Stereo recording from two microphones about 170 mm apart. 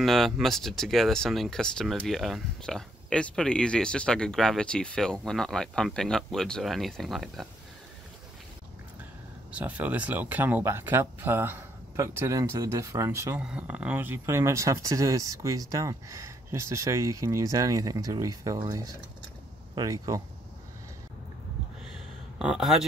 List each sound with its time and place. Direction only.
0.0 s speech: centre (ahead or behind)
9.5 s speech: 10° right (ahead or behind)
22.4 s speech: 5° right (ahead or behind)